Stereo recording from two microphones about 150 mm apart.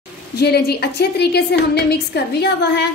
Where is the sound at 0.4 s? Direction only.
90° left.